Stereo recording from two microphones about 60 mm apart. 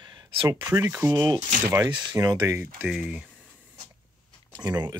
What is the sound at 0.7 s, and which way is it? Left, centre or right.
Speech, right.